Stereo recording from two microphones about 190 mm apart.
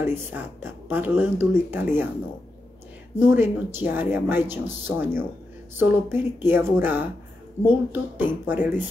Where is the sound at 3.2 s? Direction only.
10° right (ahead or behind).